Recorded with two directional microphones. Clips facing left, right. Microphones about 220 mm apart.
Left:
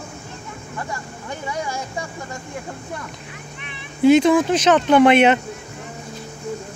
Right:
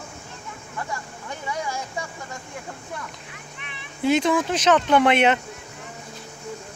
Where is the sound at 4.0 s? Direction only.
5° left (ahead or behind).